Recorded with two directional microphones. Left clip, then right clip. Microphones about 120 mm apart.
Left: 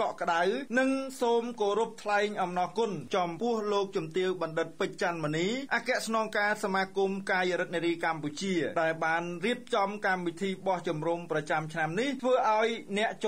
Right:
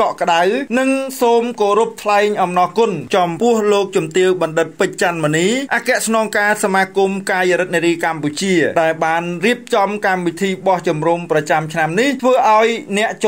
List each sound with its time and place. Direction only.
0.0 s speech: 30° right (ahead or behind)